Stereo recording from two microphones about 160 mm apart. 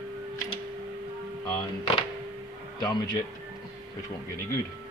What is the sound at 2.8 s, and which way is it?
Speech, 25° left (ahead or behind).